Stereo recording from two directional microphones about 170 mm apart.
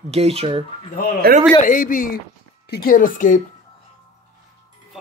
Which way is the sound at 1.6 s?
50° left (ahead or behind).